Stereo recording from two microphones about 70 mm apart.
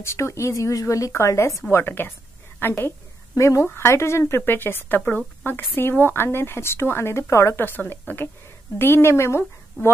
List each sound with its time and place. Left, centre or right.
0.0 s a woman's voice: left
1.7 s a woman's voice: left
3.3 s a woman's voice: left
7.6 s a woman's voice: left